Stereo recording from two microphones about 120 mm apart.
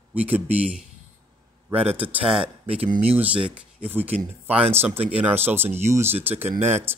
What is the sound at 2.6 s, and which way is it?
Speech, 55° right (ahead or behind).